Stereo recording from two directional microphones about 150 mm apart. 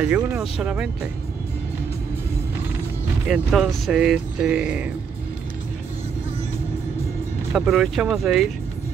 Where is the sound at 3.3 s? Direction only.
Centre (ahead or behind).